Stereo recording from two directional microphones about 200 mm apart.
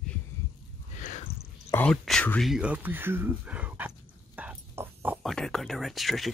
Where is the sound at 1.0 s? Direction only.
40° left (ahead or behind).